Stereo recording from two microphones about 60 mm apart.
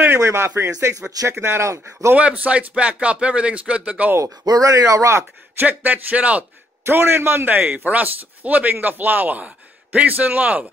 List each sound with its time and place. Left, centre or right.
0.2 s speech: right
2.1 s speech: right
4.2 s speech: right
5.6 s speech: right
6.9 s speech: right